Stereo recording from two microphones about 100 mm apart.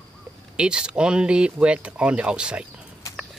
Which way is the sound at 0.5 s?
10° right (ahead or behind).